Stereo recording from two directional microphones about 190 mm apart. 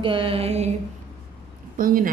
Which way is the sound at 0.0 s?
25° right (ahead or behind).